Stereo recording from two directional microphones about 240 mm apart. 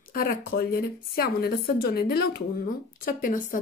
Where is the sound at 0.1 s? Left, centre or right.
Left.